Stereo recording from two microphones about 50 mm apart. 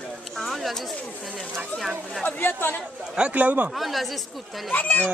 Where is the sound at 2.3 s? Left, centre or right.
Left.